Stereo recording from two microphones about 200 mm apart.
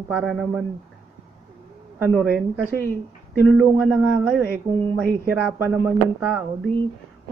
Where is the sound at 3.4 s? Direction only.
Centre (ahead or behind).